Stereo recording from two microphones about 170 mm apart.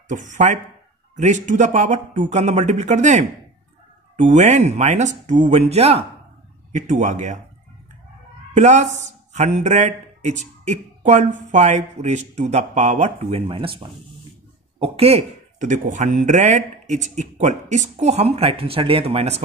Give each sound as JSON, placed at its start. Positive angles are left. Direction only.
{"t": 0.1, "sound": "speech", "side_deg": -45}
{"t": 8.5, "sound": "speech", "side_deg": -45}